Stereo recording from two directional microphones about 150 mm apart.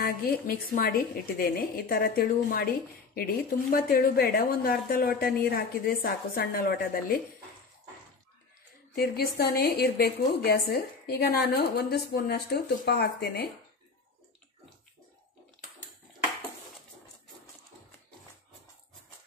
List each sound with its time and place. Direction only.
0.0 s a woman's voice: 85° left
3.7 s a woman's voice: 85° left
8.9 s a woman's voice: 90° left